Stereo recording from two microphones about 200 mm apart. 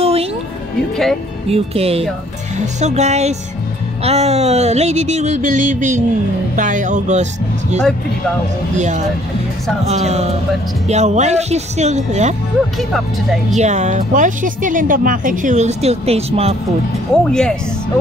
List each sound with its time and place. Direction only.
0.0 s music: 30° right (ahead or behind)
1.5 s speech: 30° right (ahead or behind)
8.7 s speech: 35° right (ahead or behind)
12.7 s speech: centre (ahead or behind)
13.6 s speech: 35° right (ahead or behind)
17.2 s speech: 5° left (ahead or behind)